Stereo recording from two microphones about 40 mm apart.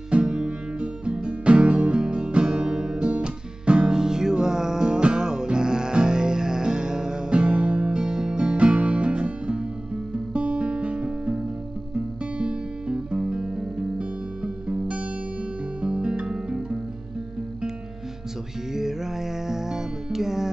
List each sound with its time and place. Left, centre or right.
0.1 s music: right
8.0 s music: centre
14.4 s music: right
18.7 s music: centre